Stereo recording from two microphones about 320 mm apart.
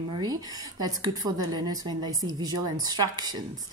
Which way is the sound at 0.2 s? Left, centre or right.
Centre.